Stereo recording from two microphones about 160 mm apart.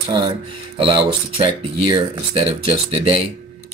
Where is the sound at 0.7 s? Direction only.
35° right (ahead or behind).